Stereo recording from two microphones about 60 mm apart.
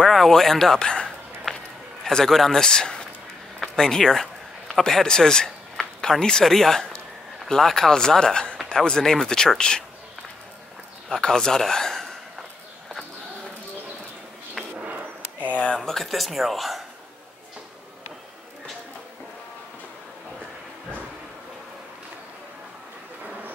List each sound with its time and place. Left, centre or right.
0.0 s speech: centre
11.1 s speech: centre
15.5 s speech: left
15.8 s speech: centre